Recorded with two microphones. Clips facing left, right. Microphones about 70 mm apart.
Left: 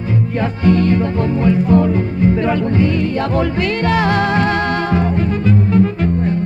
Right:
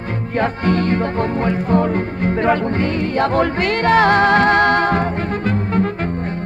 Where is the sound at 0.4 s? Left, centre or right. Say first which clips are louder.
Left 2 dB; right.